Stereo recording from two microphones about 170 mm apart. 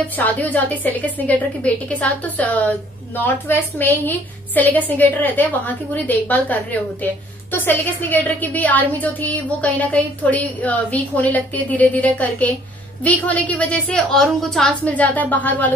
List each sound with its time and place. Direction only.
0.1 s a woman's voice: 10° left (ahead or behind)